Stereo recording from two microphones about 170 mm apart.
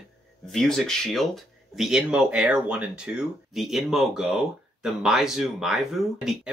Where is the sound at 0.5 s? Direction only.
Centre (ahead or behind).